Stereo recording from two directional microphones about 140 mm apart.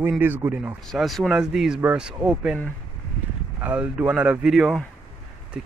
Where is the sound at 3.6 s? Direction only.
10° right (ahead or behind).